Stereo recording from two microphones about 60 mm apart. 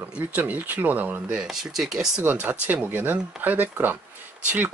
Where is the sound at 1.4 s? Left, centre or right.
Centre.